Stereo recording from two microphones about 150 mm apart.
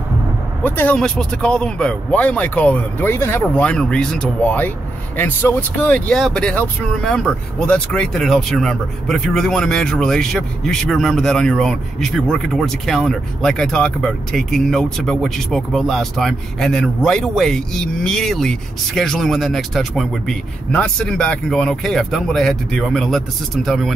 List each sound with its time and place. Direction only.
0.7 s speech: 10° left (ahead or behind)